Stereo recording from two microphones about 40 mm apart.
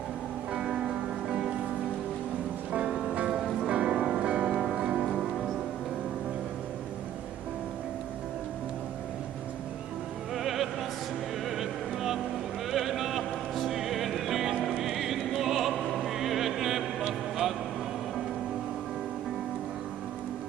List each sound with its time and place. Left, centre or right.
0.6 s music: centre
2.7 s music: right
10.3 s music: centre
14.8 s opera: centre
16.0 s music: centre